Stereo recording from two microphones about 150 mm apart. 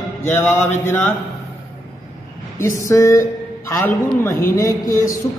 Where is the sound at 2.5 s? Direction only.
20° left (ahead or behind).